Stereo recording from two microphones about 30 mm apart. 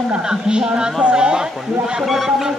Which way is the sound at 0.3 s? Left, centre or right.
Right.